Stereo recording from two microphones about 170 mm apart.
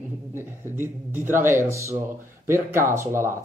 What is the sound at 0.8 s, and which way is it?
Speech, 15° right (ahead or behind).